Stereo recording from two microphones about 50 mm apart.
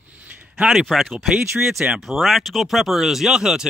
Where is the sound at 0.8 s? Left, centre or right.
Centre.